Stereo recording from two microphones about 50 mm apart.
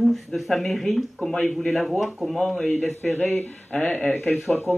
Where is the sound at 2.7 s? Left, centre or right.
Left.